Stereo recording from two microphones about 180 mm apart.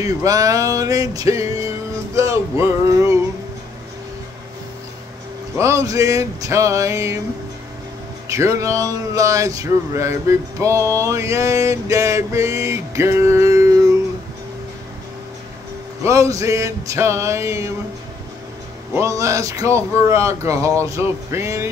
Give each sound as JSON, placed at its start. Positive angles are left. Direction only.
{"t": 0.0, "sound": "a sound", "side_deg": -20}
{"t": 5.6, "sound": "speech", "side_deg": -15}
{"t": 8.3, "sound": "speech", "side_deg": -15}
{"t": 16.0, "sound": "speech", "side_deg": -15}
{"t": 18.9, "sound": "speech", "side_deg": -15}